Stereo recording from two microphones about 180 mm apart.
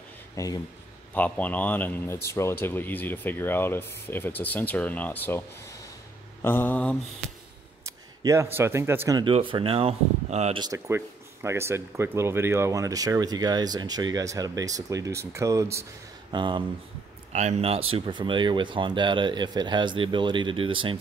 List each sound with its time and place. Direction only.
0.4 s speech: 15° left (ahead or behind)
7.8 s speech: 15° right (ahead or behind)
9.2 s speech: 30° right (ahead or behind)
10.6 s speech: 20° right (ahead or behind)
17.3 s speech: 40° right (ahead or behind)